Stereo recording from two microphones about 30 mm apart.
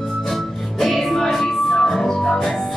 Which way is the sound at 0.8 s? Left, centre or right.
Centre.